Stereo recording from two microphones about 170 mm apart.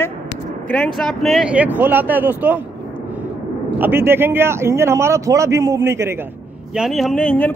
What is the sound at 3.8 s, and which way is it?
A man's voice, 15° right (ahead or behind).